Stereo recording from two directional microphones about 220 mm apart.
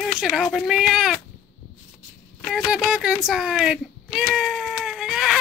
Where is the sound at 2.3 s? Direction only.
Centre (ahead or behind).